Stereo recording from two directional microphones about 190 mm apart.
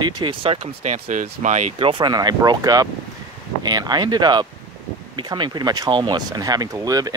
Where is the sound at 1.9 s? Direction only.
20° right (ahead or behind).